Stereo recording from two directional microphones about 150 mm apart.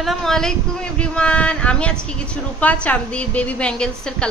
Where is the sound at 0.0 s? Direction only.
Centre (ahead or behind).